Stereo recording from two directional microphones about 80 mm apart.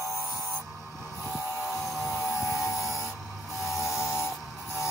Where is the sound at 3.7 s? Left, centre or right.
Left.